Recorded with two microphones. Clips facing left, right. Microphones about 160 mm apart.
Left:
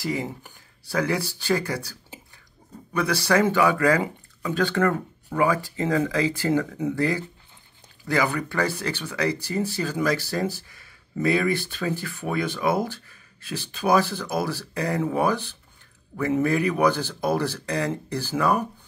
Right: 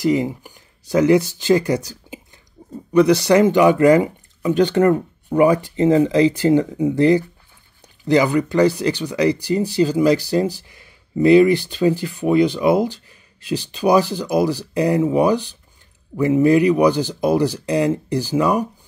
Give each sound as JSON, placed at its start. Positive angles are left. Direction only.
{"t": 0.0, "sound": "speech", "side_deg": -20}
{"t": 3.3, "sound": "speech", "side_deg": -20}